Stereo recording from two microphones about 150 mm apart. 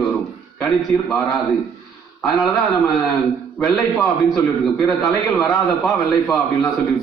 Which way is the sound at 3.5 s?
5° left (ahead or behind).